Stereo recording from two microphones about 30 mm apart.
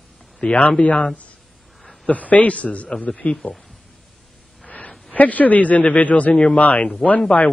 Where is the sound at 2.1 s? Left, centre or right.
Left.